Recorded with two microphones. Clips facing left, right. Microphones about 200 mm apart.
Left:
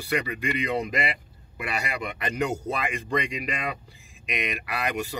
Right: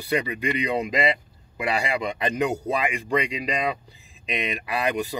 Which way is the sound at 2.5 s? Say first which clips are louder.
Right 4 dB; 15° right (ahead or behind).